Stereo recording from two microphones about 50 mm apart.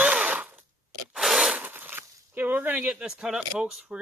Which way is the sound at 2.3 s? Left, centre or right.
Right.